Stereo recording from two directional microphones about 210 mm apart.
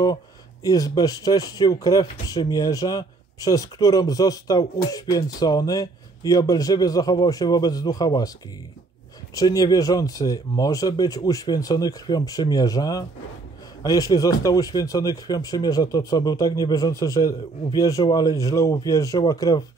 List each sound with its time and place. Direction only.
0.7 s speech: 15° left (ahead or behind)
9.3 s speech: 15° left (ahead or behind)